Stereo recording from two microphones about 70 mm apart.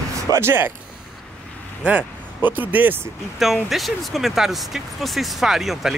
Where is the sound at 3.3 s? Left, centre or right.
Centre.